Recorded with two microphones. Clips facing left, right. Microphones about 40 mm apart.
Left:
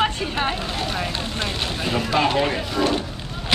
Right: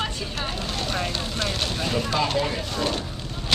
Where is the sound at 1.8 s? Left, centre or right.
Left.